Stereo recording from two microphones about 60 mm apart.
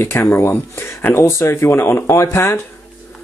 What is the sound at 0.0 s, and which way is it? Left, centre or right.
Speech, left.